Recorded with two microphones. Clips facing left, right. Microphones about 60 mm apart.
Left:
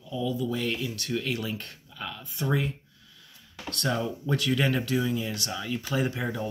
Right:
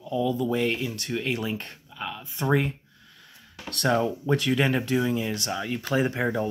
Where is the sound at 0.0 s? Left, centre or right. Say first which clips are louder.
Right 4 dB; right.